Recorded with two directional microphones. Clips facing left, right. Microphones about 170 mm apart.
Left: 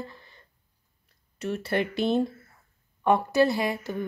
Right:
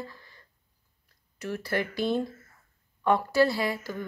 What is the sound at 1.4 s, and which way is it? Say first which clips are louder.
Speech: left 3 dB; 25° left (ahead or behind).